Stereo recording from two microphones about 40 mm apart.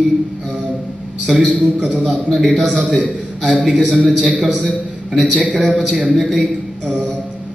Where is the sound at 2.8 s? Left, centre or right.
Right.